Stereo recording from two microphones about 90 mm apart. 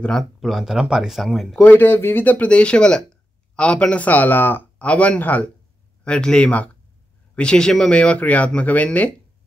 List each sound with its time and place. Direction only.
0.4 s speech: centre (ahead or behind)
1.6 s speech: 20° left (ahead or behind)